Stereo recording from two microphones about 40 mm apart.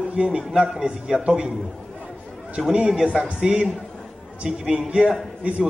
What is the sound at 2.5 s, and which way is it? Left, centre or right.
Speech, centre.